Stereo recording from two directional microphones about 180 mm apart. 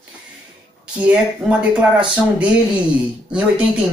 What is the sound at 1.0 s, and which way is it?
Speech, 5° right (ahead or behind).